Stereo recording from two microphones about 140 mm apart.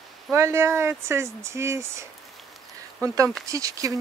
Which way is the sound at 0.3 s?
20° right (ahead or behind).